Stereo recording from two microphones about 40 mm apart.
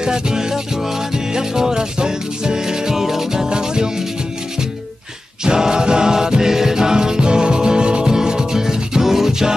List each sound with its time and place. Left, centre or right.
0.0 s music: centre
5.4 s music: centre